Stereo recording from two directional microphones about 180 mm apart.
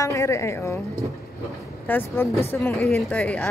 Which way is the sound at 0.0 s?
15° left (ahead or behind).